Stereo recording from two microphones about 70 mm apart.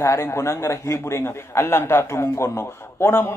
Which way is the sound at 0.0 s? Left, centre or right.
Left.